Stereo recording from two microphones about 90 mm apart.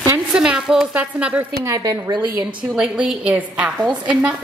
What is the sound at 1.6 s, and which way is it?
Speech, 40° right (ahead or behind).